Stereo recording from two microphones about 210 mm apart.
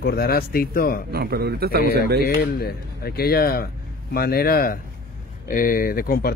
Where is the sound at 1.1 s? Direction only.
50° right (ahead or behind).